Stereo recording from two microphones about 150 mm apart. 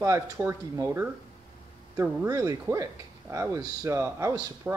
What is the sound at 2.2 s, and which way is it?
Speech, 25° right (ahead or behind).